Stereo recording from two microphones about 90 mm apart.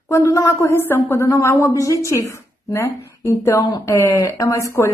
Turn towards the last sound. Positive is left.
turn(degrees=35)  # may be behind; listen again after turning